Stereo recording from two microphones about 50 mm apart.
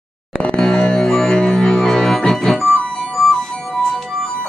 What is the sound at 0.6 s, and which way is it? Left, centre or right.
Music, centre.